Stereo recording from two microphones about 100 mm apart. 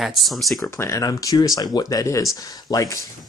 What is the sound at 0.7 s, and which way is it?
Speech, 30° left (ahead or behind).